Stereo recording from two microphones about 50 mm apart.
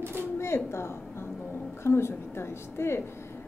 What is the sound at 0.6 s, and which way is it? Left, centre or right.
A woman's voice, left.